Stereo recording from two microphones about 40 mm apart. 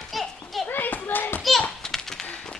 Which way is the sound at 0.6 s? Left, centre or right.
Left.